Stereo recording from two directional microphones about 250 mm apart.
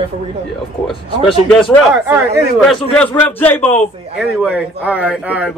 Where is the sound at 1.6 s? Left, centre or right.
Centre.